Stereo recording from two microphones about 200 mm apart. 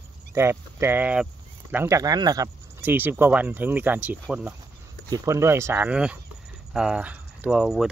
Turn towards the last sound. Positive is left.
turn(degrees=-5)  # may be behind; listen again after turning